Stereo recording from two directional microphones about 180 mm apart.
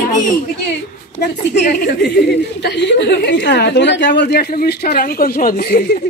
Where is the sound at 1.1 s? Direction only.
65° left (ahead or behind).